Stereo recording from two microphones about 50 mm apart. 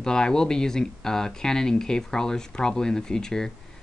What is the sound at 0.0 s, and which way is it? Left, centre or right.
Speech, centre.